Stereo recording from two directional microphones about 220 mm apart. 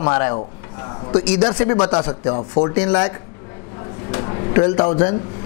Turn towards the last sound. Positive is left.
turn(degrees=25)  # may be behind; listen again after turning